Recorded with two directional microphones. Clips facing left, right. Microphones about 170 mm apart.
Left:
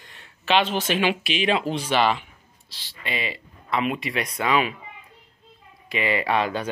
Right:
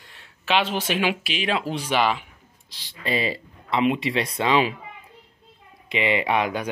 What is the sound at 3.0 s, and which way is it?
Speech, 35° right (ahead or behind).